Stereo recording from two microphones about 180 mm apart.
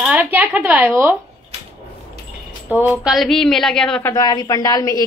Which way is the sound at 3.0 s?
Centre (ahead or behind).